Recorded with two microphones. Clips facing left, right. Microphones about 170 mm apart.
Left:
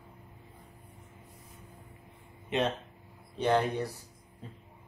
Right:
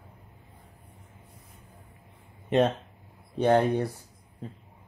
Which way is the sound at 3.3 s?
55° right (ahead or behind).